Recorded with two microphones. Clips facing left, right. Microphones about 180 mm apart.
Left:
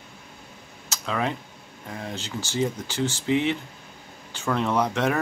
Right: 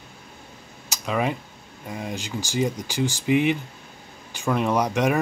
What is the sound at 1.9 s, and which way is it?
Speech, 15° right (ahead or behind).